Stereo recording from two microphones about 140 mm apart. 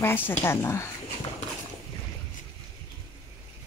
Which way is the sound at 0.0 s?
15° left (ahead or behind).